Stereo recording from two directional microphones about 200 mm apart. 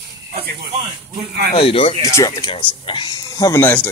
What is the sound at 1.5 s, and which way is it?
Speech, 25° left (ahead or behind).